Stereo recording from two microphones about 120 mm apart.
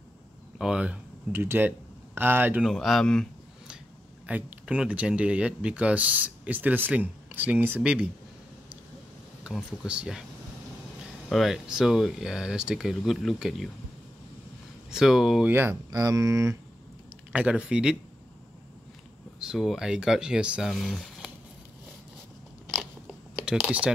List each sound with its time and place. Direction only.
0.6 s speech: 5° right (ahead or behind)
1.3 s speech: 20° right (ahead or behind)
2.6 s speech: centre (ahead or behind)
4.3 s speech: 15° right (ahead or behind)
9.4 s speech: 5° right (ahead or behind)
11.2 s speech: centre (ahead or behind)
14.9 s speech: 5° right (ahead or behind)
15.5 s speech: 20° right (ahead or behind)
17.3 s speech: 10° right (ahead or behind)
19.4 s speech: 5° right (ahead or behind)
23.3 s speech: 5° right (ahead or behind)